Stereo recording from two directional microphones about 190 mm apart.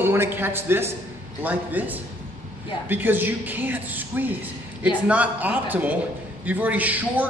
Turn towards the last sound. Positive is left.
turn(degrees=-10)  # may be behind; listen again after turning